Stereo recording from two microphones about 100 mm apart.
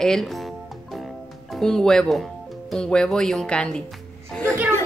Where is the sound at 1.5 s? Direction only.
5° left (ahead or behind).